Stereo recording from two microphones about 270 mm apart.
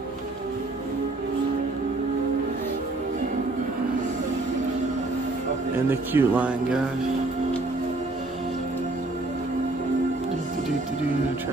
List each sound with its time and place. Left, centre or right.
5.9 s speech: centre